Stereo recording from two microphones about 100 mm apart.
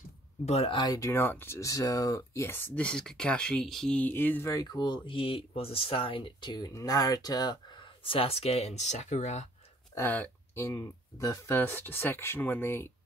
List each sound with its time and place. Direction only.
0.5 s speech: 90° left
0.7 s speech: 35° left (ahead or behind); by 4.0 s 5° left (ahead or behind)
4.0 s speech: 20° left (ahead or behind)
4.5 s speech: 40° left (ahead or behind)
6.7 s speech: 35° left (ahead or behind); by 8.7 s 90° left
9.9 s speech: 20° left (ahead or behind)